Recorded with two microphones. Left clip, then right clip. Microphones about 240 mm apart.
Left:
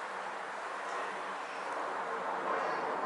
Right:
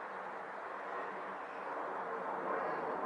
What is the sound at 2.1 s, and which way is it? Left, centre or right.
Bow-wow, centre.